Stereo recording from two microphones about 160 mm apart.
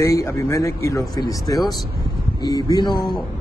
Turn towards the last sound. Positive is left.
turn(degrees=25)  # may be behind; listen again after turning